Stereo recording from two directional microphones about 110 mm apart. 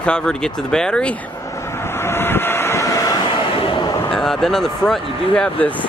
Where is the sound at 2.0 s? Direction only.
20° left (ahead or behind).